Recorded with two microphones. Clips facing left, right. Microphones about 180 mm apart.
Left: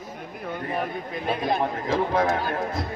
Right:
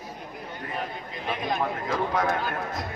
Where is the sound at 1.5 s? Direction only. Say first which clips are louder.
Left 2 dB; 30° left (ahead or behind).